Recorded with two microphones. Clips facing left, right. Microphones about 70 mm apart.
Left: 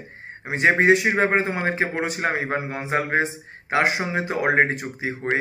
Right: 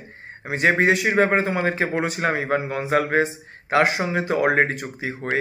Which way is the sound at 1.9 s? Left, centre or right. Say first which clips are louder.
Right 2 dB; centre.